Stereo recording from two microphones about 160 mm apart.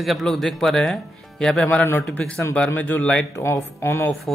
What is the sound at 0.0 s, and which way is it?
A man's voice, centre (ahead or behind).